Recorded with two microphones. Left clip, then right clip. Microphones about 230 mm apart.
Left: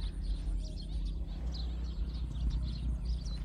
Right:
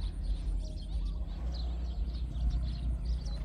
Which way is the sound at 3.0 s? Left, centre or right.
Right.